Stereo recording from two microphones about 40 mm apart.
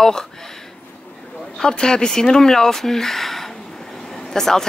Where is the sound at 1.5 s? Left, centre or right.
Centre.